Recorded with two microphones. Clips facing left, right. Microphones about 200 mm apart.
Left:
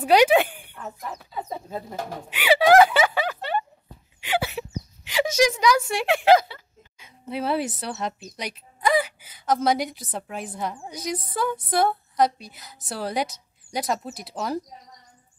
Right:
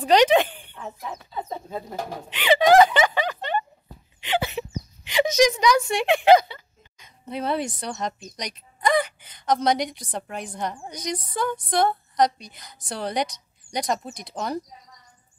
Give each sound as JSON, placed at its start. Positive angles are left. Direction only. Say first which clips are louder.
{"t": 0.0, "sound": "speech", "louder": "even", "side_deg": 10}
{"t": 4.2, "sound": "a sound", "louder": "right 1 dB", "side_deg": 10}
{"t": 5.0, "sound": "a woman's voice", "louder": "right 2 dB", "side_deg": 5}